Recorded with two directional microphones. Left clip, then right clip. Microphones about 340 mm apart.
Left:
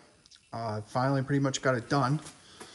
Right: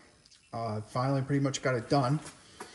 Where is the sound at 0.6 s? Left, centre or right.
Centre.